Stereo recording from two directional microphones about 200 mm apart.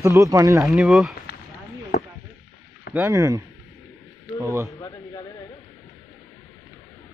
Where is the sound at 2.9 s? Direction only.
15° right (ahead or behind).